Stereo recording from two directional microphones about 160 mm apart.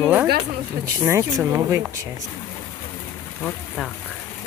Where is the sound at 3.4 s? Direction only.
5° left (ahead or behind).